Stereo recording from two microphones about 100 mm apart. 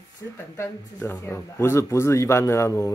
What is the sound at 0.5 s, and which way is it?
Speech, 25° left (ahead or behind).